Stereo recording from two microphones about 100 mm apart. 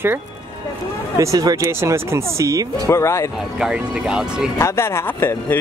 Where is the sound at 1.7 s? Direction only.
25° right (ahead or behind).